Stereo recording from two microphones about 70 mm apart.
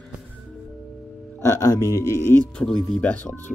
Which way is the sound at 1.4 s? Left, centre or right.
Left.